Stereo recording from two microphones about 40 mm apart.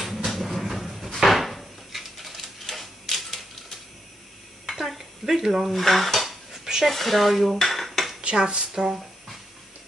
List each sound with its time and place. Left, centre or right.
0.0 s drawer open or close: centre
2.6 s typewriter: centre
4.6 s dishes: centre
6.9 s speech: centre
7.5 s dishes: centre
8.2 s dishes: right
8.8 s a sound: centre